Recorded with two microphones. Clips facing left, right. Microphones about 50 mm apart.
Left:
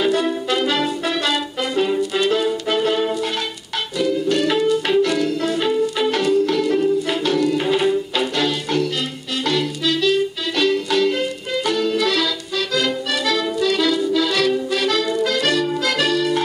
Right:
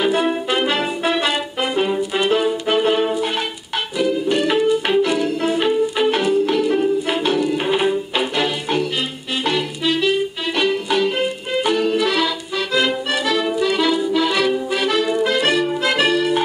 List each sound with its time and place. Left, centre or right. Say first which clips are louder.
0.0 s music: right 1 dB; right
0.5 s brass instrument: even; right
4.0 s music: even; right